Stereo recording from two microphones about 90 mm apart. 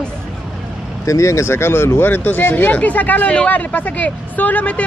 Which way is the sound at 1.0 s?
35° left (ahead or behind).